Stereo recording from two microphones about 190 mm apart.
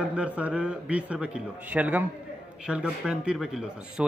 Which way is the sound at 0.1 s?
5° right (ahead or behind).